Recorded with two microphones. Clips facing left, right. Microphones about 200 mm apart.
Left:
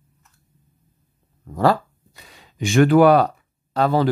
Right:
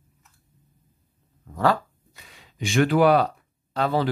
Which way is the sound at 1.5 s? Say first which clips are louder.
Left 4 dB; 35° left (ahead or behind).